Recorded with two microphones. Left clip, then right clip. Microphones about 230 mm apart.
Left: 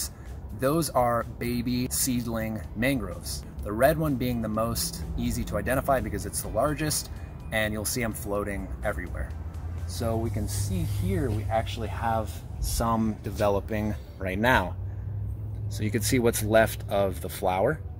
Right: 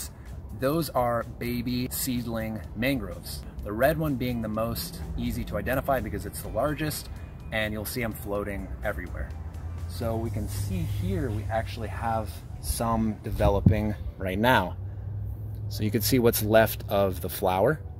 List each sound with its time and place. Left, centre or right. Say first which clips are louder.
0.6 s speech: left 2 dB; centre; by 14.7 s right
15.7 s speech: right 1 dB; right